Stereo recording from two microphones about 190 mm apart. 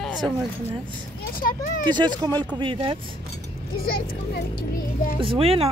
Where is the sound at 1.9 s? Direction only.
20° right (ahead or behind).